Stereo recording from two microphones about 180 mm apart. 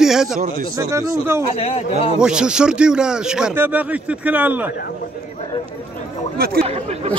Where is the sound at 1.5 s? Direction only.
40° left (ahead or behind).